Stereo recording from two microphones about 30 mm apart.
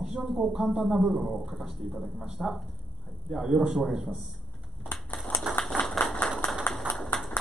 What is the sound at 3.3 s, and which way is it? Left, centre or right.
Speech, centre.